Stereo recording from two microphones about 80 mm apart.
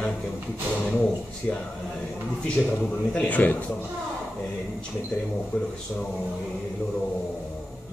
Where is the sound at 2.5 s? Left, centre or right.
Centre.